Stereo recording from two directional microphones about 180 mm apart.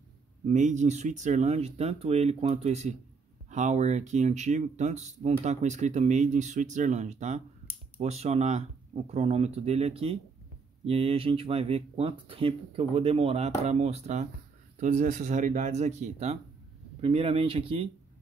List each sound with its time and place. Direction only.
0.5 s speech: 40° right (ahead or behind)